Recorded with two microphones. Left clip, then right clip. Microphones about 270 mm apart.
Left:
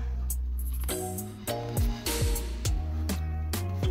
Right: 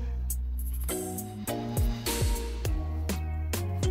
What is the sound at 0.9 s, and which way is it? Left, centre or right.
Music, centre.